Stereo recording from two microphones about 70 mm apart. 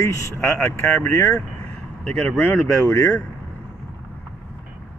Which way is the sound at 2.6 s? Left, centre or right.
Left.